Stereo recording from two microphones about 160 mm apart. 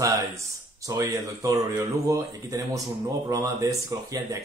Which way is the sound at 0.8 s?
20° right (ahead or behind).